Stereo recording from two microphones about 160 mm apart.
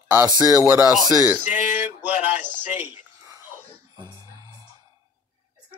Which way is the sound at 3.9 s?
20° right (ahead or behind).